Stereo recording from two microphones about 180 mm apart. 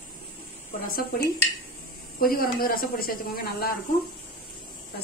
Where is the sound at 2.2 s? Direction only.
55° left (ahead or behind).